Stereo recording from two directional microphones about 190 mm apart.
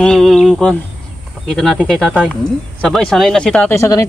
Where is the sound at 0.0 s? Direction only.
5° left (ahead or behind).